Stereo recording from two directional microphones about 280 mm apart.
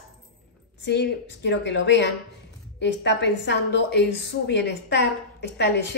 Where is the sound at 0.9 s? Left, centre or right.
Left.